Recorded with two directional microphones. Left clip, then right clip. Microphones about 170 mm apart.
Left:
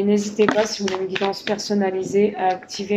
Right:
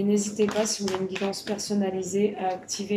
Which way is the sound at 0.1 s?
25° left (ahead or behind).